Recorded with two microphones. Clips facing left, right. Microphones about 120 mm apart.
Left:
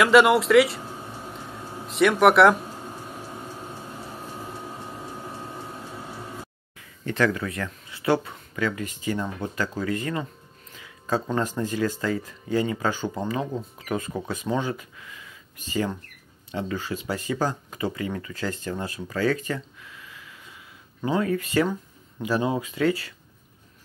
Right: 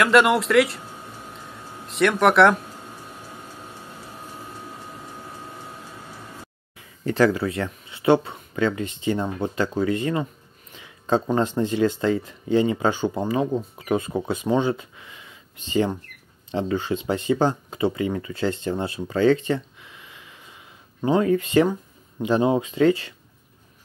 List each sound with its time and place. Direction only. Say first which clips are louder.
0.0 s speech: left 1 dB; centre (ahead or behind)
1.9 s speech: left 1 dB; centre (ahead or behind)
6.8 s speech: right 5 dB; 35° right (ahead or behind)